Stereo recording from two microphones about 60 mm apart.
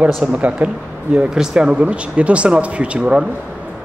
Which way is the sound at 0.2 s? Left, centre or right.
Right.